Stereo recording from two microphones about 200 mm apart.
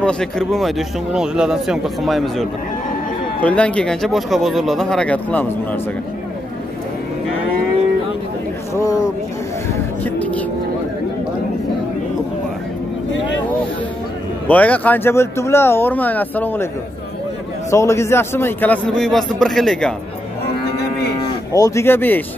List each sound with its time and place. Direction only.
0.0 s a man's voice: 5° left (ahead or behind)
3.4 s a man's voice: 5° left (ahead or behind)
8.7 s a man's voice: 15° left (ahead or behind)
10.0 s music: 5° left (ahead or behind)
14.5 s a man's voice: 5° left (ahead or behind)
17.6 s a man's voice: 15° left (ahead or behind)
21.5 s a man's voice: 15° left (ahead or behind)